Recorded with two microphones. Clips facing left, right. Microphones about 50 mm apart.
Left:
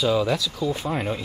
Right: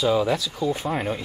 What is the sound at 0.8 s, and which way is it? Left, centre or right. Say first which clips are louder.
Speech: even; centre.